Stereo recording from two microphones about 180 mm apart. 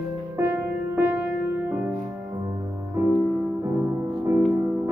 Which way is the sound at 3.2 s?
5° right (ahead or behind).